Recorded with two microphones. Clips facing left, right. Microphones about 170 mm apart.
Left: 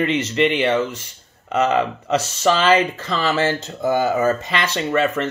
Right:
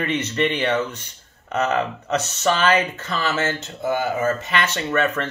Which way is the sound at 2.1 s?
90° left.